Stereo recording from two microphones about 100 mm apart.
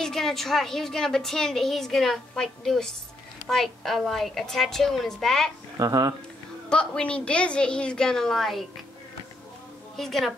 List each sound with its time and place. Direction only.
0.0 s a woman's voice: 5° left (ahead or behind)
5.8 s speech: 35° right (ahead or behind)
6.7 s a woman's voice: 10° left (ahead or behind)
9.9 s a woman's voice: 5° left (ahead or behind)